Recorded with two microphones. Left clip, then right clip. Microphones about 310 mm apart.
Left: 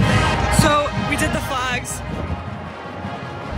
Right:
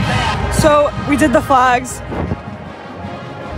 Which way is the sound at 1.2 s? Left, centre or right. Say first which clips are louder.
Right 15 dB; centre.